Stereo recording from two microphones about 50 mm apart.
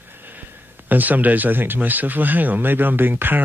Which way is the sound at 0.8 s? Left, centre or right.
Right.